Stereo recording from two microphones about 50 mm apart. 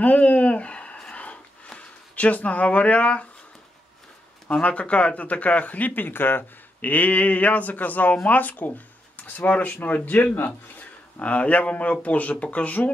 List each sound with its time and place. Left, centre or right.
0.0 s speech: left
1.1 s a sound: left
1.8 s speech: left
4.5 s speech: left
6.9 s speech: left
10.3 s speech: left
11.1 s speech: left